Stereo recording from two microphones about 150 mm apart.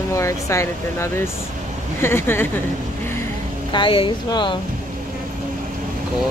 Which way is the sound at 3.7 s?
35° left (ahead or behind).